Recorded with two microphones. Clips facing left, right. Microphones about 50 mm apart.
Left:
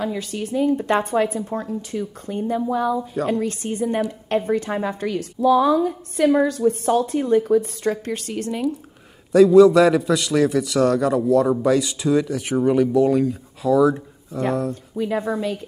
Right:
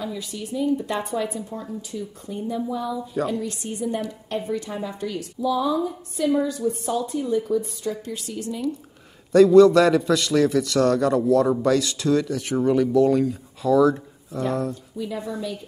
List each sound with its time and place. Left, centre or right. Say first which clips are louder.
0.0 s a woman's voice: left 5 dB; left
9.3 s a man's voice: left 1 dB; centre
15.0 s a woman's voice: left 8 dB; left